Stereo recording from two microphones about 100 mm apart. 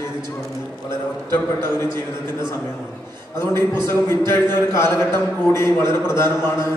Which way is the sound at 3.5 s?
25° left (ahead or behind).